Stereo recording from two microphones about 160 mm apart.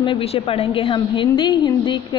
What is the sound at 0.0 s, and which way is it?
A woman's voice, 35° left (ahead or behind).